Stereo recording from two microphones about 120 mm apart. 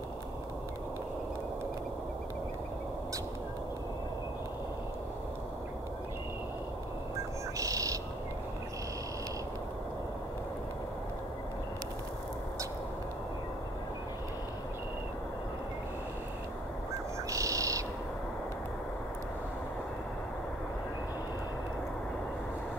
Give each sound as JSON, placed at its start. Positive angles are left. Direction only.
{"t": 7.5, "sound": "bird", "side_deg": -30}
{"t": 17.3, "sound": "bird", "side_deg": -30}